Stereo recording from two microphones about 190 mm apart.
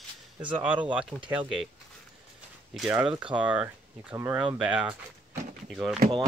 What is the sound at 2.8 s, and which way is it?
Speech, 5° right (ahead or behind).